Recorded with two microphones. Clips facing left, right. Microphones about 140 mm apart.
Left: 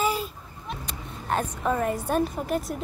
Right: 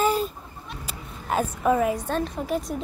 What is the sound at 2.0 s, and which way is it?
Speech, 10° left (ahead or behind).